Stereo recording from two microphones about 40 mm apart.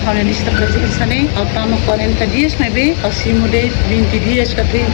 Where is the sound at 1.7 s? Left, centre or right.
Centre.